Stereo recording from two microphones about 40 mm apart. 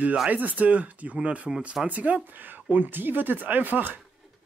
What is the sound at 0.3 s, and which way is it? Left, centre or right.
Speech, right.